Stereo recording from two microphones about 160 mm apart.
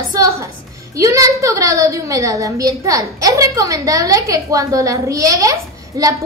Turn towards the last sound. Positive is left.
turn(degrees=-20)  # may be behind; listen again after turning